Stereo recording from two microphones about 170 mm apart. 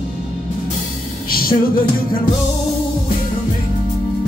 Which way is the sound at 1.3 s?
60° left (ahead or behind).